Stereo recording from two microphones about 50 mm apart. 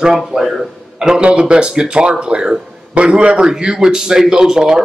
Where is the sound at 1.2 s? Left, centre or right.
Right.